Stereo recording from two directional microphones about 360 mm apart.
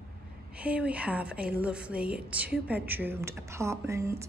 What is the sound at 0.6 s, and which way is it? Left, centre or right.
A woman's voice, centre.